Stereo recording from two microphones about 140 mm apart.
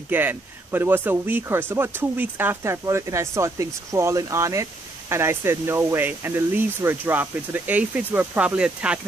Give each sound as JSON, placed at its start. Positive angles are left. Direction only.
{"t": 0.1, "sound": "speech", "side_deg": -15}